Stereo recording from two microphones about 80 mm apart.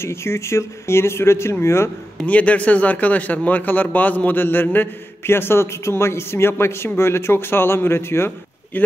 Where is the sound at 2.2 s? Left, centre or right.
Centre.